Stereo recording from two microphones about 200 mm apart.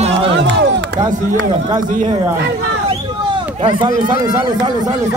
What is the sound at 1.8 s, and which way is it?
Speech, 40° right (ahead or behind).